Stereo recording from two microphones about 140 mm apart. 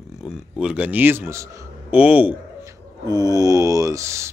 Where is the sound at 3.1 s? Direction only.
30° right (ahead or behind).